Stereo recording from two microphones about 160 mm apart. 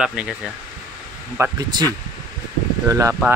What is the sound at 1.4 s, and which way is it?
Speech, 25° right (ahead or behind).